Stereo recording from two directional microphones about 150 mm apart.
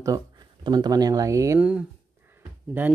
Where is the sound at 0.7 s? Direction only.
25° right (ahead or behind).